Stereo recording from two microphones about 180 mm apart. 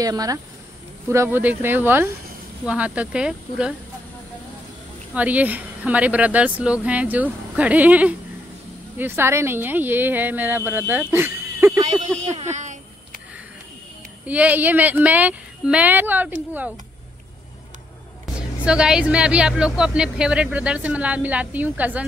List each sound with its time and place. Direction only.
0.0 s speech: 20° right (ahead or behind)
5.1 s speech: 10° right (ahead or behind)
12.2 s speech: 40° right (ahead or behind)
14.2 s speech: 10° right (ahead or behind)
18.2 s speech: 5° right (ahead or behind)